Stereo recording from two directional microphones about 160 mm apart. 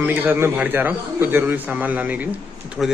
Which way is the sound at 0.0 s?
10° right (ahead or behind).